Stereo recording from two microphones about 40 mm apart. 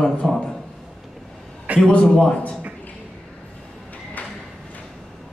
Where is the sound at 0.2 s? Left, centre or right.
Centre.